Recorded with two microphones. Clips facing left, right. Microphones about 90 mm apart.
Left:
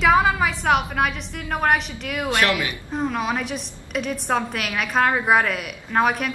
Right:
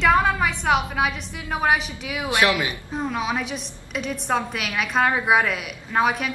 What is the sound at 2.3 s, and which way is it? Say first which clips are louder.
Speech: right 1 dB; 15° right (ahead or behind).